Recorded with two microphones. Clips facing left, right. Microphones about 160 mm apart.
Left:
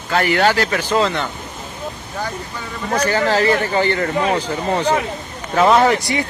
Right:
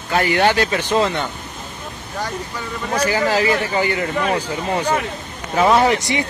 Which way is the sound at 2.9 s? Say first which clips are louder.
Left 1 dB; 10° right (ahead or behind).